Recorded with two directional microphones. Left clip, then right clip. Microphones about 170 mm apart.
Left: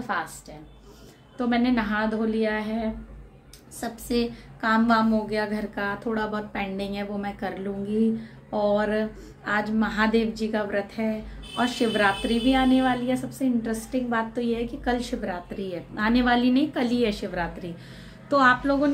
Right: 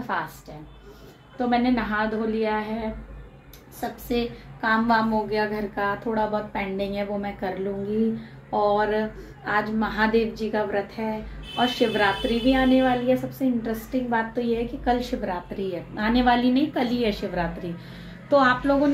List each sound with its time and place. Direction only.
1.5 s a woman's voice: 5° left (ahead or behind)
4.1 s a woman's voice: 5° left (ahead or behind)